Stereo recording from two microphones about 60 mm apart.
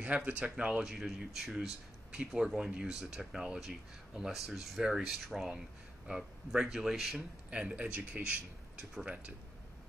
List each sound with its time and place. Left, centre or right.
0.0 s speech: right; by 7.2 s centre
7.5 s speech: right